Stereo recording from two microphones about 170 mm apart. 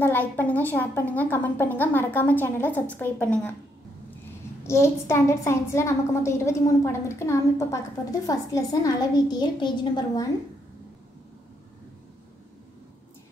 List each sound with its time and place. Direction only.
0.0 s a woman's voice: 10° left (ahead or behind)
4.6 s a woman's voice: 15° left (ahead or behind)